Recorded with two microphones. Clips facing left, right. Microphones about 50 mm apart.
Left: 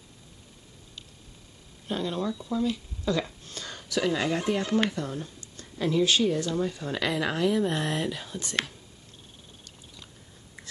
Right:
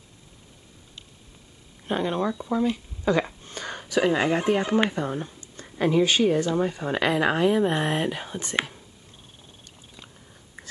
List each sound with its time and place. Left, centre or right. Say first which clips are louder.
1.9 s speech: right 4 dB; right